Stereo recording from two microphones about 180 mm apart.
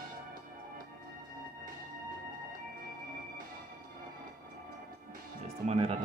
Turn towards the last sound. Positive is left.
turn(degrees=-35)  # may be behind; listen again after turning